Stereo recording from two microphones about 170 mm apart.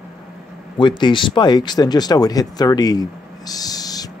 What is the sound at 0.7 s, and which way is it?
Speech, 25° left (ahead or behind).